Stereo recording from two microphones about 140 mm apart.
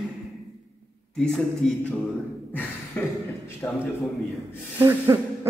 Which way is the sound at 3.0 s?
15° left (ahead or behind).